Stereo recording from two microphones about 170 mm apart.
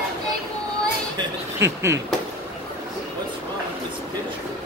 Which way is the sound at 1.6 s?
15° right (ahead or behind).